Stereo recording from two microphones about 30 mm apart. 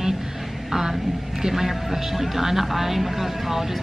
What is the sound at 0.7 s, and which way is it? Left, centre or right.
A woman's voice, centre.